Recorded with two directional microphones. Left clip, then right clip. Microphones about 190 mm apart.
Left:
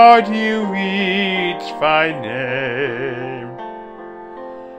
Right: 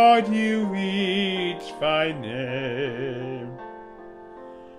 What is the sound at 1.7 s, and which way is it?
Music, 10° right (ahead or behind).